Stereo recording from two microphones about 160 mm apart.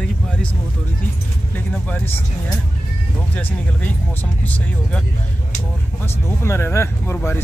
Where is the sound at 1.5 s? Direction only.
10° left (ahead or behind).